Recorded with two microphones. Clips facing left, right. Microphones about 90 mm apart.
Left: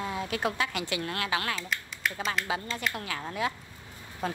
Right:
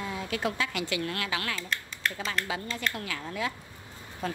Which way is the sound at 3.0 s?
30° left (ahead or behind).